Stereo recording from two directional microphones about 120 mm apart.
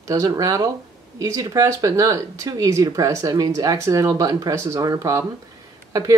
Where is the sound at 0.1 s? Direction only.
30° right (ahead or behind).